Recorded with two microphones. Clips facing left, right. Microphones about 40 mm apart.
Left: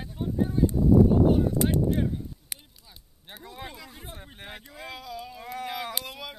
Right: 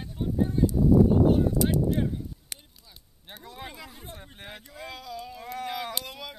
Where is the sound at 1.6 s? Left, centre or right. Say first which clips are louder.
Even; left.